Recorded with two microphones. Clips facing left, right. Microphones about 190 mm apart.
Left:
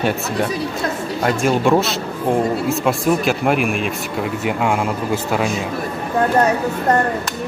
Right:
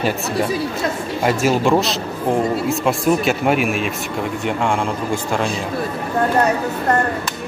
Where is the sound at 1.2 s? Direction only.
5° right (ahead or behind).